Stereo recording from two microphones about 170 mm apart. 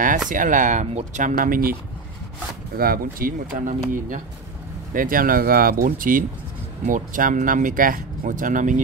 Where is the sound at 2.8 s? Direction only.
60° right (ahead or behind).